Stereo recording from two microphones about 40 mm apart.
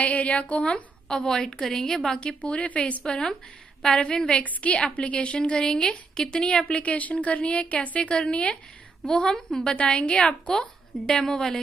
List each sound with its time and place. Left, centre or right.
0.0 s a woman's voice: left; by 2.1 s centre
2.1 s a woman's voice: left
3.8 s a woman's voice: left
4.2 s a woman's voice: left
5.4 s a woman's voice: left
6.7 s a woman's voice: left
8.1 s a woman's voice: left
9.0 s a woman's voice: centre
9.6 s a woman's voice: left
11.1 s a woman's voice: centre